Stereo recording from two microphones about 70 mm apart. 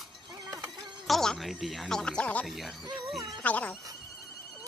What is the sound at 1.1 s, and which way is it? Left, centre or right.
Music, centre.